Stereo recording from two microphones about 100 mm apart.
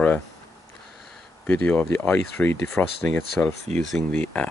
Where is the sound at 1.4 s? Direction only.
20° left (ahead or behind).